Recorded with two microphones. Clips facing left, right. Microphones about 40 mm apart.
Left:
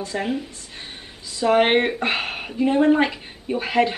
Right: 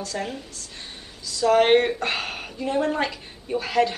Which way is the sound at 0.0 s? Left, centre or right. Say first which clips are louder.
Left 5 dB; left.